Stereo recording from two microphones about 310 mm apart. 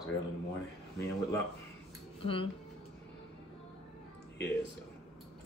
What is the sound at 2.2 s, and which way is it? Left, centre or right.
Speech, centre.